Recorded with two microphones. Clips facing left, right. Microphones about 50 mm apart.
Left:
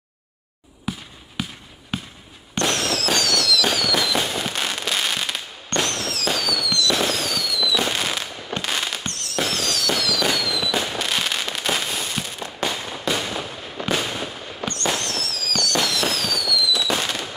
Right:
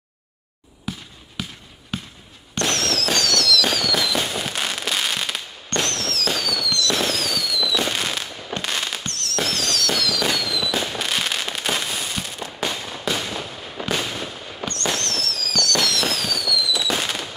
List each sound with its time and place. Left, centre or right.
0.9 s basketball bounce: centre
1.4 s a sound: centre
1.9 s basketball bounce: centre
2.5 s fireworks: centre